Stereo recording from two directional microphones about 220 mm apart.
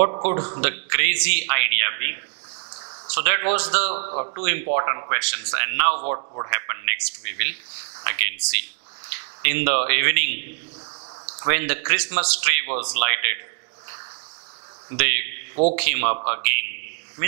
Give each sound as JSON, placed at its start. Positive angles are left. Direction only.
{"t": 0.6, "sound": "a man's voice", "side_deg": -10}
{"t": 3.2, "sound": "a man's voice", "side_deg": -15}
{"t": 3.9, "sound": "a man's voice", "side_deg": -35}
{"t": 4.2, "sound": "a man's voice", "side_deg": -15}
{"t": 14.9, "sound": "a sound", "side_deg": -15}
{"t": 15.7, "sound": "a man's voice", "side_deg": -15}